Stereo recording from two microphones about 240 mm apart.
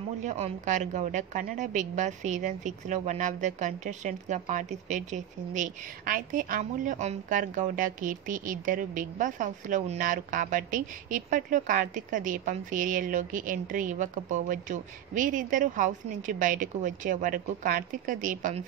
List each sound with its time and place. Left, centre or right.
0.2 s a woman's voice: right